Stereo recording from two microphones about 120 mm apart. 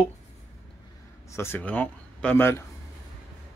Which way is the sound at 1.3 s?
20° left (ahead or behind).